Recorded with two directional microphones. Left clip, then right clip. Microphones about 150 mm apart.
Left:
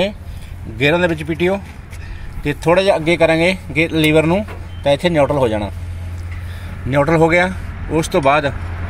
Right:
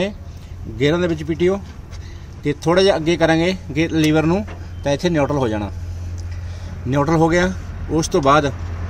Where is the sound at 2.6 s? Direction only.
5° right (ahead or behind).